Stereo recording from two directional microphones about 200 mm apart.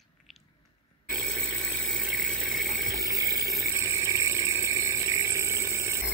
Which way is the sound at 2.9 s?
15° right (ahead or behind).